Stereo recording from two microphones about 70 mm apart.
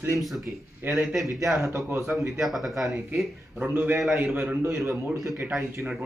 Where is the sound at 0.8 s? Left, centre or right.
Right.